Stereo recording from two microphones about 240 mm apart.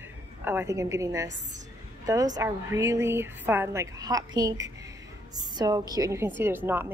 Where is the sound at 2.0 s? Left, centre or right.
Centre.